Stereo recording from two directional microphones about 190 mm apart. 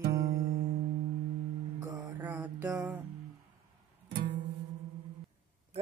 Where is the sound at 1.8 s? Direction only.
15° right (ahead or behind).